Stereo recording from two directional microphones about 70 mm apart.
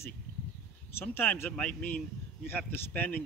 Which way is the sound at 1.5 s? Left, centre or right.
Centre.